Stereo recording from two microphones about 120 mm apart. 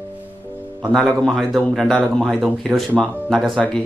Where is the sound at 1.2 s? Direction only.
Centre (ahead or behind).